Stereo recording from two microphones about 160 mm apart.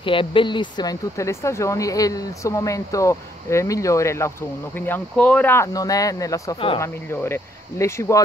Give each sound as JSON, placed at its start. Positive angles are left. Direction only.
{"t": 0.0, "sound": "speech", "side_deg": 30}